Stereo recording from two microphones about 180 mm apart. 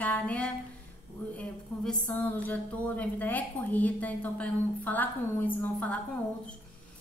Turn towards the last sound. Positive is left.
turn(degrees=5)  # may be behind; listen again after turning